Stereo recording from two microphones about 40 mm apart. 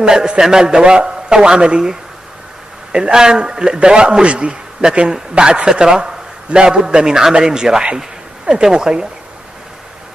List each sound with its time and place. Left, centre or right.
0.0 s a man's voice: centre